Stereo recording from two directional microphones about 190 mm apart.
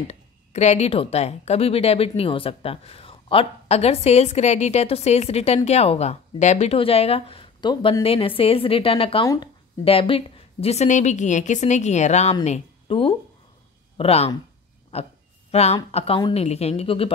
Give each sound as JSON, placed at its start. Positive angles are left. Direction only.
{"t": 0.1, "sound": "a woman's voice", "side_deg": 35}